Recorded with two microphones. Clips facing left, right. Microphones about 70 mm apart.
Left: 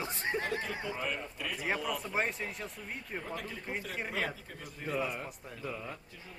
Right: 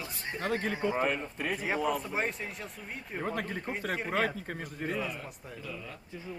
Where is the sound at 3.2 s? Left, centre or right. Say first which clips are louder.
Right 8 dB; right.